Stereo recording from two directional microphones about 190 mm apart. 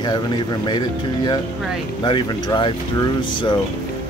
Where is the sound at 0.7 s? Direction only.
20° left (ahead or behind).